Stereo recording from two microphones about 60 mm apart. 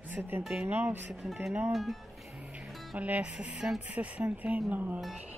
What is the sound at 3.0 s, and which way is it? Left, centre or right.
A woman's voice, right.